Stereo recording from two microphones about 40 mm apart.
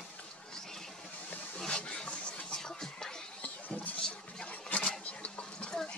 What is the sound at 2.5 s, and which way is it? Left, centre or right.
Music, centre.